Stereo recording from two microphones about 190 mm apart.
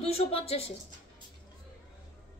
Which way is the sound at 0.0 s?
30° left (ahead or behind).